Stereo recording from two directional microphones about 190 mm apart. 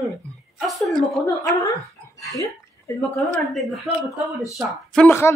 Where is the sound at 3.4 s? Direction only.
Centre (ahead or behind).